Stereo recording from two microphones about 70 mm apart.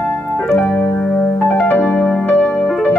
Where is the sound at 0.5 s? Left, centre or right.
Centre.